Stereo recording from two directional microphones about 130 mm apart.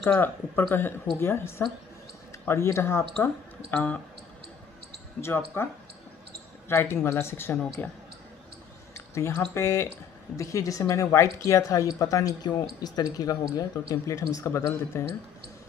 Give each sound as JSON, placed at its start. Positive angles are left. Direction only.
{"t": 0.0, "sound": "speech", "side_deg": 10}
{"t": 5.2, "sound": "speech", "side_deg": 20}
{"t": 6.7, "sound": "speech", "side_deg": 20}
{"t": 8.9, "sound": "a sound", "side_deg": 20}
{"t": 9.5, "sound": "speech", "side_deg": 20}